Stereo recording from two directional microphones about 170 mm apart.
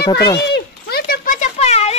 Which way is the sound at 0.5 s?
65° left (ahead or behind).